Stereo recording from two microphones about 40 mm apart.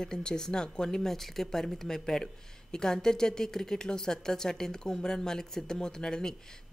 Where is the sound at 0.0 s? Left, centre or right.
Centre.